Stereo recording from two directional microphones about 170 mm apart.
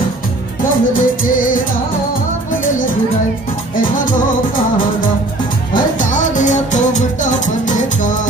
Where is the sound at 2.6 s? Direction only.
50° left (ahead or behind).